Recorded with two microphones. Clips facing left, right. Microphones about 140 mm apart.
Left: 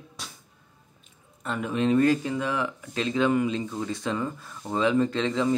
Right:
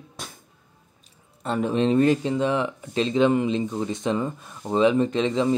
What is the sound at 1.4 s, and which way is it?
Speech, 30° right (ahead or behind).